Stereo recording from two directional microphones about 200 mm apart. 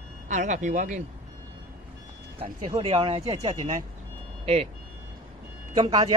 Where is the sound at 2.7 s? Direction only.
30° right (ahead or behind).